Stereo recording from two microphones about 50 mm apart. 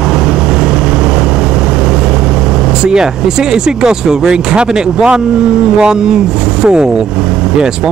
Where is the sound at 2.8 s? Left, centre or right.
Centre.